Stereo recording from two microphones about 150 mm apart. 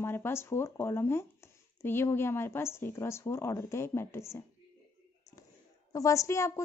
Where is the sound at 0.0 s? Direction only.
15° left (ahead or behind).